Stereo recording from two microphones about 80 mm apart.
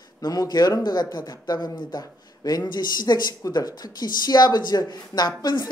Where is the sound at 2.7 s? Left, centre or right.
Left.